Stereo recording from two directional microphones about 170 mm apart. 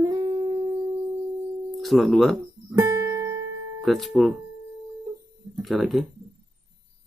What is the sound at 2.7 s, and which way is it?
Guitar, 15° right (ahead or behind).